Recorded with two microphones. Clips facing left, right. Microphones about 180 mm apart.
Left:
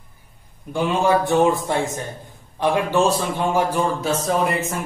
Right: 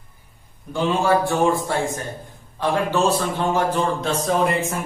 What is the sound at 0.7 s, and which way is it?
A man's voice, 20° left (ahead or behind).